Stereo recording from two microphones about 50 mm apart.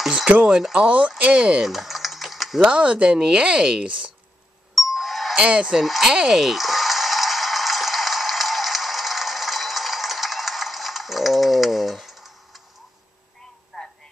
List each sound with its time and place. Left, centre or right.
0.0 s a sound: centre
0.5 s speech: centre
0.7 s speech: right
1.6 s typing: centre
2.6 s speech: right
4.7 s doorbell: centre
5.4 s speech: centre
5.8 s a sound: centre
13.7 s a sound: centre